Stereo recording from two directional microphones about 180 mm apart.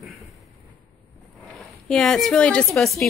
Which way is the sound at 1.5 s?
5° left (ahead or behind).